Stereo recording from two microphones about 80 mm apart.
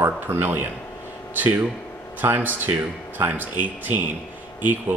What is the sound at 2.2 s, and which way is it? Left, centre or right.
Speech, right.